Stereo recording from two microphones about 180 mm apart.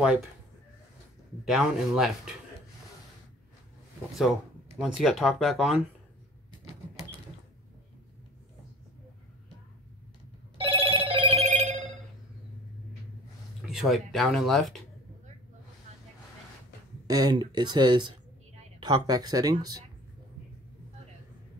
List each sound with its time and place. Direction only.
1.4 s speech: centre (ahead or behind)
4.7 s speech: centre (ahead or behind)
10.6 s telephone bell ringing: 30° right (ahead or behind)
13.6 s speech: centre (ahead or behind)
17.1 s speech: 20° right (ahead or behind)